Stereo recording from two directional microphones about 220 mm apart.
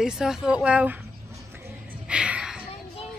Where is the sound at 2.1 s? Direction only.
5° right (ahead or behind).